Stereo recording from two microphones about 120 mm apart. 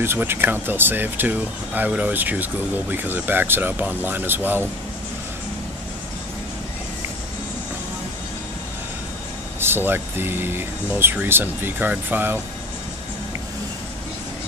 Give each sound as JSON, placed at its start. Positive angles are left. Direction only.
{"t": 0.0, "sound": "speech", "side_deg": -20}
{"t": 9.6, "sound": "speech", "side_deg": -20}